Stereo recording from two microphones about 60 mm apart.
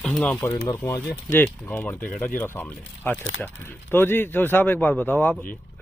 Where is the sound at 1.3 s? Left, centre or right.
Left.